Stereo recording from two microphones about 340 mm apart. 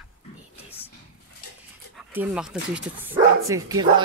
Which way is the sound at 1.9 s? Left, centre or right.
Centre.